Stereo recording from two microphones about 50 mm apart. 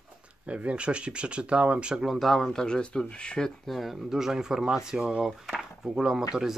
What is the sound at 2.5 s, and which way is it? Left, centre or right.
Speech, centre.